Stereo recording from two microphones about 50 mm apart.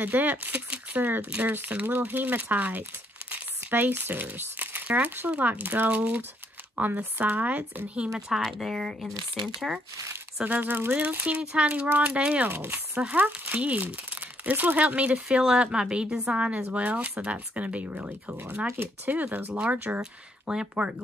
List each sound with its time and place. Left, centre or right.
0.0 s speech: right
3.3 s crumpling: right
5.3 s speech: right
8.3 s speech: centre
9.7 s speech: centre
10.4 s speech: right
12.4 s speech: right
13.1 s speech: right
15.2 s speech: centre; by 20.0 s right
20.0 s speech: centre